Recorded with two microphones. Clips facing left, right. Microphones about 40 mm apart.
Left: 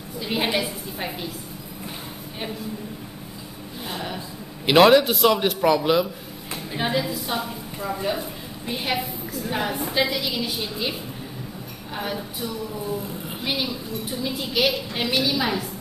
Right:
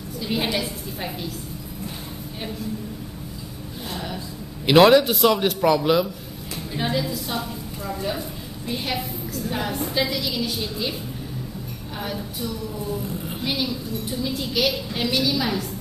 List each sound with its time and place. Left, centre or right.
0.2 s a woman's voice: centre
3.9 s a woman's voice: centre
4.6 s a man's voice: centre
6.5 s a woman's voice: centre